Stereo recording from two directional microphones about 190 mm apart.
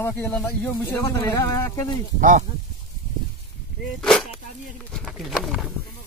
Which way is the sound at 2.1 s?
45° right (ahead or behind).